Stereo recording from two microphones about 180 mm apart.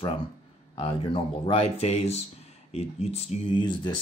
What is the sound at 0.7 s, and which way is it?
Speech, 30° left (ahead or behind).